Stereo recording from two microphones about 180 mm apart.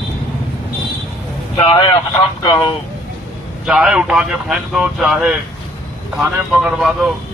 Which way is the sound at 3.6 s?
5° right (ahead or behind).